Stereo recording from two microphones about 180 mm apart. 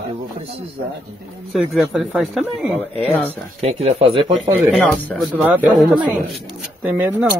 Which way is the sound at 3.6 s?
35° right (ahead or behind).